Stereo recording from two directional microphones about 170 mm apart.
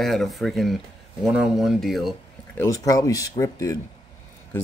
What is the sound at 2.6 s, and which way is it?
Speech, 20° left (ahead or behind).